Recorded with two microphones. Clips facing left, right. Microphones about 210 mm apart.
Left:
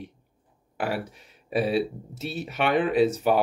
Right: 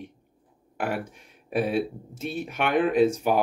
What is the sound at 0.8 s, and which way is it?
Speech, 50° right (ahead or behind).